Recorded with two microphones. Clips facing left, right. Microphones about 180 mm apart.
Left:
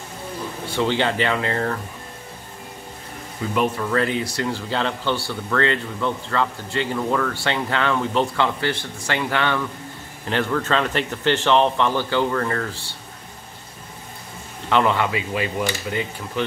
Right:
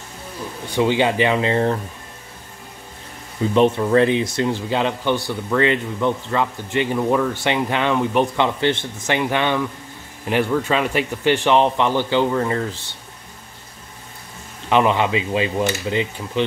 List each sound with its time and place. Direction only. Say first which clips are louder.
0.7 s speech: right 4 dB; 15° right (ahead or behind)
3.5 s speech: right 6 dB; 25° right (ahead or behind)
14.7 s speech: right 3 dB; 15° right (ahead or behind)